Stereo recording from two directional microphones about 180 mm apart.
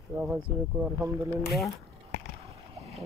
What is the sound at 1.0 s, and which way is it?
Speech, 15° right (ahead or behind).